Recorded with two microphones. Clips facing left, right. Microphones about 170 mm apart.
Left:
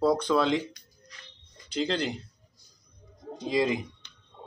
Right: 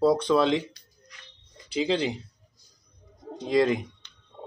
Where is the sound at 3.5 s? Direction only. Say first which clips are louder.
Right 4 dB; centre (ahead or behind).